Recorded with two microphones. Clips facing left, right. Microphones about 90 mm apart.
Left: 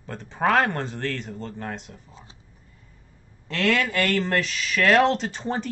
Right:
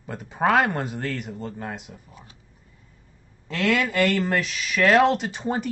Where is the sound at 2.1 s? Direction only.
25° left (ahead or behind).